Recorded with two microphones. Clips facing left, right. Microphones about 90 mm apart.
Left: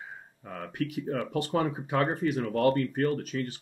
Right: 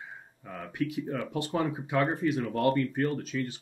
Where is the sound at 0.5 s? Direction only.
50° left (ahead or behind).